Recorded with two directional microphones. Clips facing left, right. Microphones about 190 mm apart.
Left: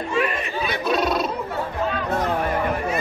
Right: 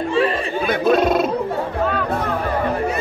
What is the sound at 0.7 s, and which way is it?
Speech, 50° right (ahead or behind).